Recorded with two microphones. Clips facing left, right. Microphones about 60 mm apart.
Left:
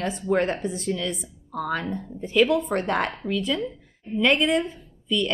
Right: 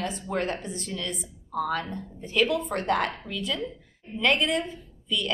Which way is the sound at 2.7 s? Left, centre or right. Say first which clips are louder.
Left 2 dB; left.